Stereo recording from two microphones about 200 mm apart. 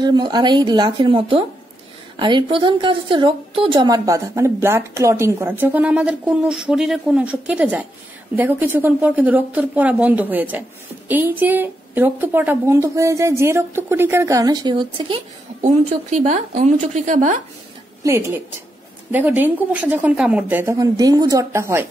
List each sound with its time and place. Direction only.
0.0 s a woman's voice: 20° right (ahead or behind)
16.2 s speech: 35° right (ahead or behind)
18.0 s a woman's voice: 10° right (ahead or behind)